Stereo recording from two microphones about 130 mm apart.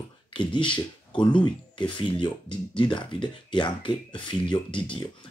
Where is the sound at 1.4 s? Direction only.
35° left (ahead or behind).